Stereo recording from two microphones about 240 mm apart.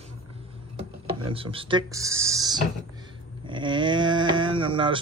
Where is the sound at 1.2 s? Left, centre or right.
Right.